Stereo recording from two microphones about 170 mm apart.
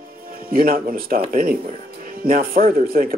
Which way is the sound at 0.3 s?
60° right (ahead or behind).